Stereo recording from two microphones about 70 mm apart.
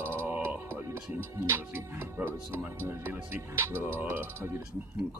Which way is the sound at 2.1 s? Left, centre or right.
Right.